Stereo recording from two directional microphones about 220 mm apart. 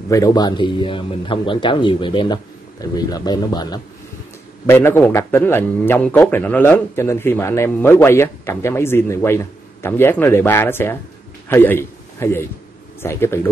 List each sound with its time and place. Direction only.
0.1 s a man's voice: 15° left (ahead or behind)